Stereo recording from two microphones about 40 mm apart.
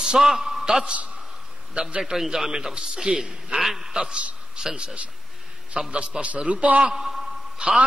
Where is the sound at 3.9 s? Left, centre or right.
Centre.